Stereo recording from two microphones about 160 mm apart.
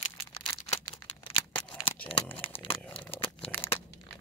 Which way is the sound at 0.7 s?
35° left (ahead or behind).